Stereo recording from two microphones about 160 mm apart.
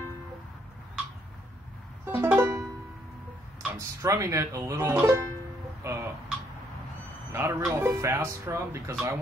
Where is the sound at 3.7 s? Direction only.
20° right (ahead or behind).